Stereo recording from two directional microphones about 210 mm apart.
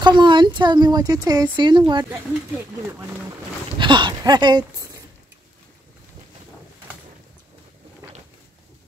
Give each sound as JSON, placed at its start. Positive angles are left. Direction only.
{"t": 0.0, "sound": "speech", "side_deg": -20}
{"t": 3.7, "sound": "speech", "side_deg": -20}